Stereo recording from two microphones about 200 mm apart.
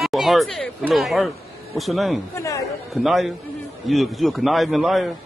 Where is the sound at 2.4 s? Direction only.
15° left (ahead or behind).